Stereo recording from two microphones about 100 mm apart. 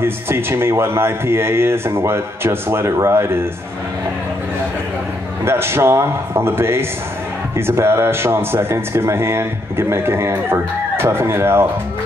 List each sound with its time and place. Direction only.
0.0 s speech: 25° right (ahead or behind)
5.4 s speech: 25° right (ahead or behind)